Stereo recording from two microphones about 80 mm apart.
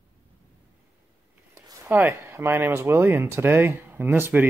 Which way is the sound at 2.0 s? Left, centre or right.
Right.